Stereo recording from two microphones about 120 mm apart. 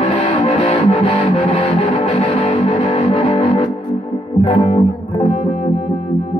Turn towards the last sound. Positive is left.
turn(degrees=50)  # may be behind; listen again after turning